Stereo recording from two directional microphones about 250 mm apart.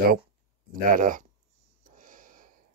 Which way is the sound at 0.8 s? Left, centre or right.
Right.